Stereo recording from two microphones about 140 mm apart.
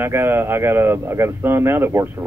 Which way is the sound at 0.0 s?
15° right (ahead or behind).